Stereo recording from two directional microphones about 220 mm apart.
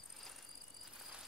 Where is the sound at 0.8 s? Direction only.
Centre (ahead or behind).